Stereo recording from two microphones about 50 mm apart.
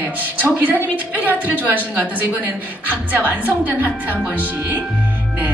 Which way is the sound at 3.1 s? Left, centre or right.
Right.